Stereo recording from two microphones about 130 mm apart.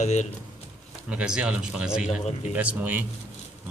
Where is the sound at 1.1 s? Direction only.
10° right (ahead or behind).